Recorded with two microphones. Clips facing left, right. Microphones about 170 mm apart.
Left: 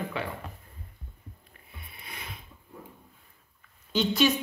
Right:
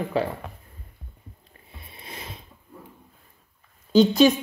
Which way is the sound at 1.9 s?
30° right (ahead or behind).